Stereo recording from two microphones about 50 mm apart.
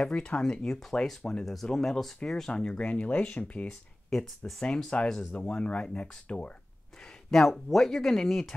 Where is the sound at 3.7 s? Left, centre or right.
Centre.